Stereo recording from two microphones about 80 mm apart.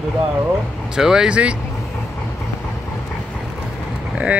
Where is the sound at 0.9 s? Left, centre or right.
Centre.